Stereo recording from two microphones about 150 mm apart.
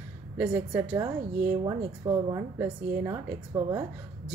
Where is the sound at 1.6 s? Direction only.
25° right (ahead or behind).